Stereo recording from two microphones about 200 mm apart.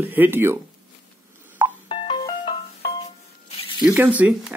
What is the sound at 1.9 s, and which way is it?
Music, 25° left (ahead or behind).